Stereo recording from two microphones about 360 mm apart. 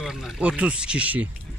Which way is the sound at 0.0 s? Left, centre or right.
Centre.